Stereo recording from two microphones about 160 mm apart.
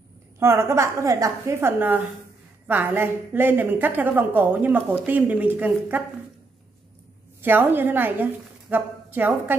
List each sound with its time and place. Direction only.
0.4 s a woman's voice: 15° right (ahead or behind)
7.4 s a woman's voice: 10° right (ahead or behind)